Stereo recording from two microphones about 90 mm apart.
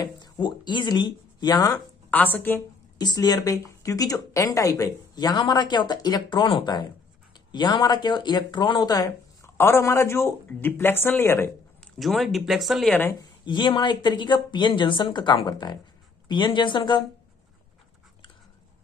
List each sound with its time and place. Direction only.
0.0 s speech: 55° left (ahead or behind)
2.0 s a woman's voice: 20° left (ahead or behind)
3.0 s speech: 50° left (ahead or behind)
9.6 s speech: 30° left (ahead or behind)
12.0 s speech: centre (ahead or behind)
13.5 s speech: 60° left (ahead or behind)